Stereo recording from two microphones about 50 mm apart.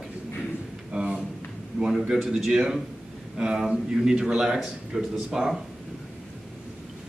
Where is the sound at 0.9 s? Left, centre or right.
Centre.